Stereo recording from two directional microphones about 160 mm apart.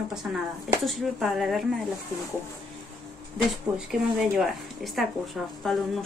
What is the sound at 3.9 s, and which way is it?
Speech, centre (ahead or behind).